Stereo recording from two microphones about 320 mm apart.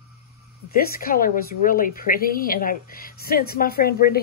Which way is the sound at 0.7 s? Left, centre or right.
Left.